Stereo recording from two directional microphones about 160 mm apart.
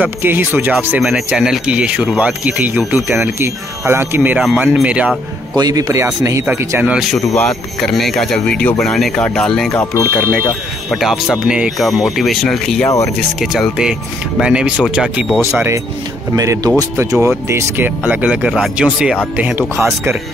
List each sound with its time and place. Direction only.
0.0 s speech: 10° right (ahead or behind)
5.6 s speech: 25° right (ahead or behind); by 10.0 s 15° left (ahead or behind)
10.9 s speech: centre (ahead or behind)
12.8 s speech: 20° left (ahead or behind)
13.4 s speech: 5° right (ahead or behind)
15.5 s speech: 15° right (ahead or behind)